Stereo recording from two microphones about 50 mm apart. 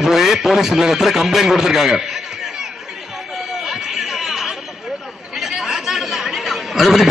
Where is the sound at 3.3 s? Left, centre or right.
Centre.